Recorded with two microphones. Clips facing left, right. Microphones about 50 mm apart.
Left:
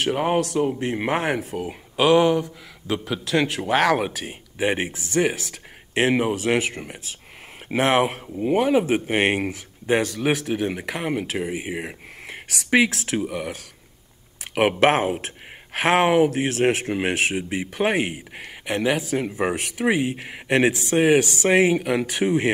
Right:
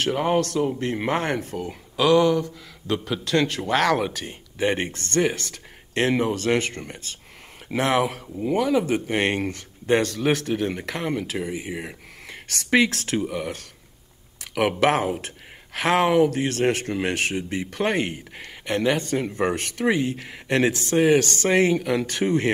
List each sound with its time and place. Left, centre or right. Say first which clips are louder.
0.0 s speech: even; centre
1.7 s speech: left 1 dB; left
2.4 s speech: right 1 dB; centre
7.7 s speech: left 2 dB; left
12.7 s speech: left 1 dB; centre
14.5 s speech: left 2 dB; left; by 22.5 s centre